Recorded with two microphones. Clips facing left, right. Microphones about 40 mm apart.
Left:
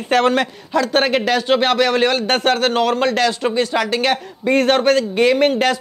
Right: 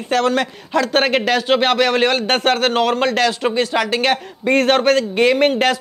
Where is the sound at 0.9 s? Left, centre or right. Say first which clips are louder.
Even; right.